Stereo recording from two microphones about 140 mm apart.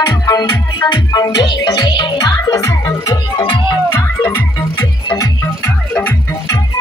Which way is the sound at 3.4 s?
35° left (ahead or behind).